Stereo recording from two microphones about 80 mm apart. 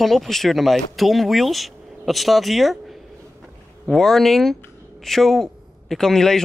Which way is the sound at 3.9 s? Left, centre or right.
Centre.